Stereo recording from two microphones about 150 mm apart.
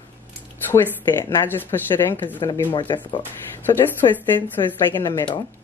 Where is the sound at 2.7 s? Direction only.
35° left (ahead or behind).